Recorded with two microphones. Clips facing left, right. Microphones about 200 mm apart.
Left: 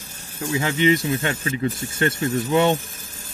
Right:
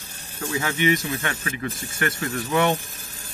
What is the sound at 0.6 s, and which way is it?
Speech, 30° left (ahead or behind).